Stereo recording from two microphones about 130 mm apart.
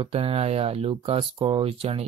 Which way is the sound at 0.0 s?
45° right (ahead or behind).